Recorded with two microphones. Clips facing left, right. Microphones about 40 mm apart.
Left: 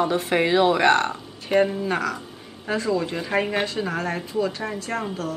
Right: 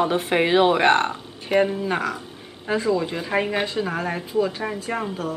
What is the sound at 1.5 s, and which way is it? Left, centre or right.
A woman's voice, centre.